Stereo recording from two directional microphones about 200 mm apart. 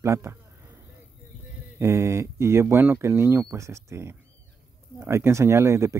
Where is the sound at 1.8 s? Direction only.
15° right (ahead or behind).